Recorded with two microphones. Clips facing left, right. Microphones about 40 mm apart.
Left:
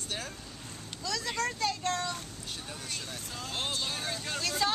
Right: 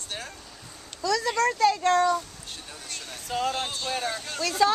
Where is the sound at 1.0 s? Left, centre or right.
Right.